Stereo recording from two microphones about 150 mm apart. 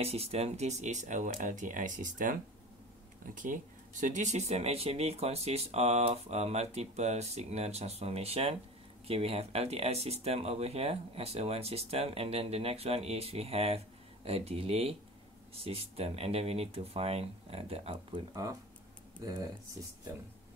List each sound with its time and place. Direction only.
0.0 s speech: 40° right (ahead or behind)